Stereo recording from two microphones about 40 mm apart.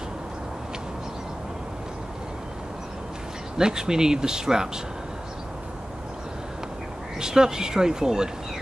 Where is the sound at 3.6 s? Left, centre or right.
Centre.